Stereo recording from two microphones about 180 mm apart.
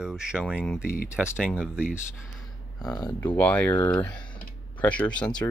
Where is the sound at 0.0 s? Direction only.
5° right (ahead or behind).